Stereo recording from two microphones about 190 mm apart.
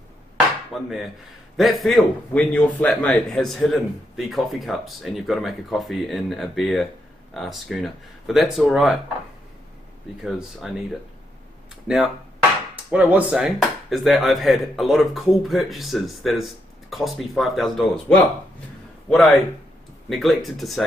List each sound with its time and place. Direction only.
0.7 s a man's voice: centre (ahead or behind)
10.6 s a man's voice: 5° right (ahead or behind)
11.9 s a man's voice: 5° right (ahead or behind)